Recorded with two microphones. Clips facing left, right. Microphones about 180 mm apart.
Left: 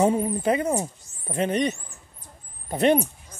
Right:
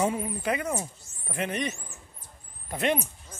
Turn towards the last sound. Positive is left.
turn(degrees=35)  # may be behind; listen again after turning